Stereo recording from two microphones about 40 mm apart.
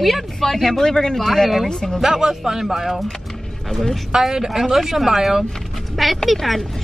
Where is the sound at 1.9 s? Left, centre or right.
Centre.